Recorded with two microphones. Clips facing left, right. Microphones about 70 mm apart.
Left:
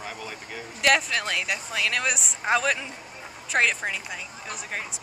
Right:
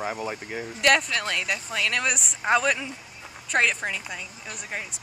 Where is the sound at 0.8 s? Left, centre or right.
Centre.